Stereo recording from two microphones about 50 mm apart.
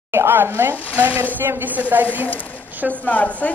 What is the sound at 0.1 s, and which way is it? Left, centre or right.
Speech, right.